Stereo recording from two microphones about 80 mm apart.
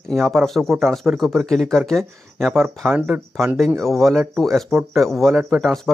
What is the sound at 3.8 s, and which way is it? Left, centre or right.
A man's voice, centre.